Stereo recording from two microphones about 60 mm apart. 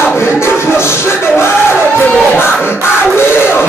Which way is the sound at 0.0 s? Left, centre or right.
Left.